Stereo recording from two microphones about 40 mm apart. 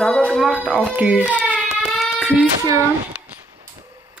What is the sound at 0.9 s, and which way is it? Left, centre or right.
Speech, right.